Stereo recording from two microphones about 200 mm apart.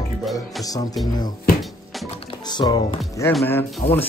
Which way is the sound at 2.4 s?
20° left (ahead or behind).